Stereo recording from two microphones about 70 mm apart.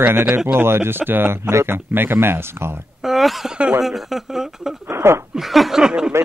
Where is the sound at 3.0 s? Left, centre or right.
Centre.